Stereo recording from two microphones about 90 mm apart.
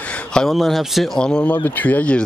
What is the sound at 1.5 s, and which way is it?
Speech, 20° left (ahead or behind).